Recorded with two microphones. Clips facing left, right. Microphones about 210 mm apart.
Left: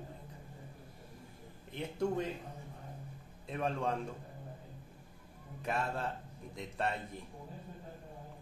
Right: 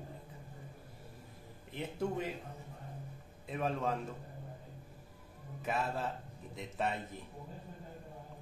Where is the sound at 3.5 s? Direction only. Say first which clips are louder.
Even; 5° right (ahead or behind).